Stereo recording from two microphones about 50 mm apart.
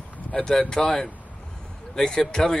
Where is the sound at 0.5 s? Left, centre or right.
Centre.